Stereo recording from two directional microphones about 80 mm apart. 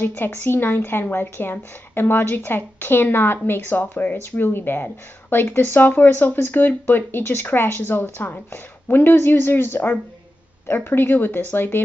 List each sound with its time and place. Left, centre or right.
0.0 s a woman's voice: left